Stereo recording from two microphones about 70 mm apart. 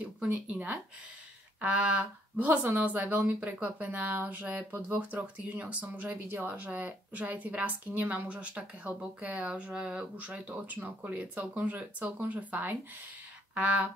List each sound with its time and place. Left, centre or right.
0.2 s speech: centre